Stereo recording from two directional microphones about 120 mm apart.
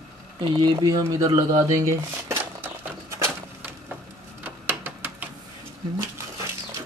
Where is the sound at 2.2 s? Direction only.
20° right (ahead or behind).